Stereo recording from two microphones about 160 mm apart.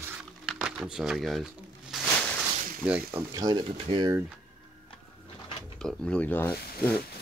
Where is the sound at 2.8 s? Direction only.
10° right (ahead or behind).